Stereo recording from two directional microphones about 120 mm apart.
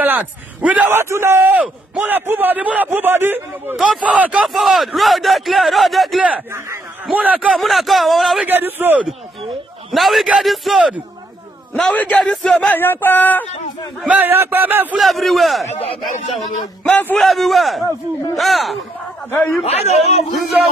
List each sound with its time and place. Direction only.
0.0 s a man's voice: 15° right (ahead or behind)
3.7 s a man's voice: 5° right (ahead or behind)
6.5 s speech: 20° right (ahead or behind)
7.5 s speech: centre (ahead or behind)
8.5 s a man's voice: 15° right (ahead or behind)
9.9 s a man's voice: centre (ahead or behind)
14.0 s a man's voice: 15° right (ahead or behind)
15.0 s speech: centre (ahead or behind)
16.8 s speech: 15° left (ahead or behind)
17.2 s speech: centre (ahead or behind)
19.6 s a man's voice: 60° left (ahead or behind)